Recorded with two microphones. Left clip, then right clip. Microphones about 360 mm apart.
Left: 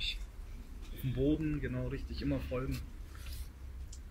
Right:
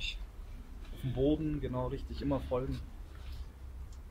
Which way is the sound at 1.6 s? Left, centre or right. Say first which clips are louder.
Right 3 dB; centre.